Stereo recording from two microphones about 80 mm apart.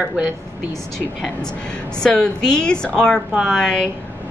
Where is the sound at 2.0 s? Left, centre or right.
Centre.